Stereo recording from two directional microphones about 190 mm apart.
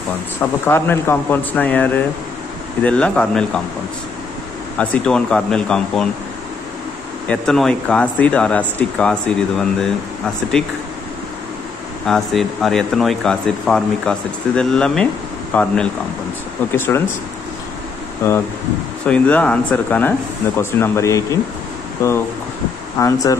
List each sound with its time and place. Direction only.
0.4 s speech: 10° left (ahead or behind)
4.7 s speech: 5° left (ahead or behind)
7.2 s speech: centre (ahead or behind)
12.1 s speech: centre (ahead or behind)
19.0 s speech: 5° left (ahead or behind)
22.9 s speech: 15° left (ahead or behind)